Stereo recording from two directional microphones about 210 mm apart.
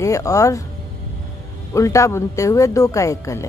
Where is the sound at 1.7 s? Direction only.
15° left (ahead or behind).